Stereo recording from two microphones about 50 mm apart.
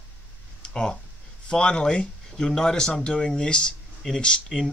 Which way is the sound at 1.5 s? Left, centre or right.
Centre.